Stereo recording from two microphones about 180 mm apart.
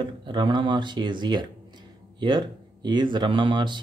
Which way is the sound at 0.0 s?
25° right (ahead or behind).